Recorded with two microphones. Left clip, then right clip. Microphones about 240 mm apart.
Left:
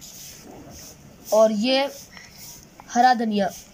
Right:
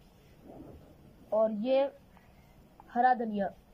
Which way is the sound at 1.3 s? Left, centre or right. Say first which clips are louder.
Left 11 dB; left.